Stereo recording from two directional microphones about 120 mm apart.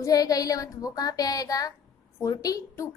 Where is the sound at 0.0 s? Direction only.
30° left (ahead or behind).